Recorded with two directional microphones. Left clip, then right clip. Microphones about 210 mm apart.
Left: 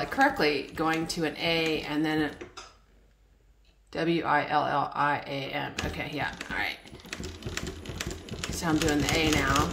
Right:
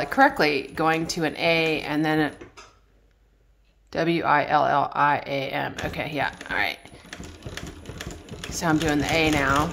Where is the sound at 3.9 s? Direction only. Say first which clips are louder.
Right 5 dB; 35° right (ahead or behind).